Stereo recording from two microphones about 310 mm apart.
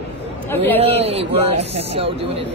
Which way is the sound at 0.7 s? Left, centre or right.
Centre.